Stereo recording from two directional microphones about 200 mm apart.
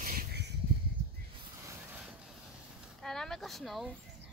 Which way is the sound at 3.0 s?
Centre (ahead or behind).